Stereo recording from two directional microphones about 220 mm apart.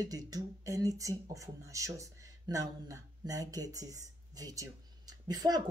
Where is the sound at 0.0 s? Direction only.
15° right (ahead or behind).